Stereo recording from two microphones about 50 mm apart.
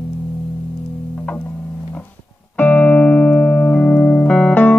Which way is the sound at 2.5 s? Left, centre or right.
Left.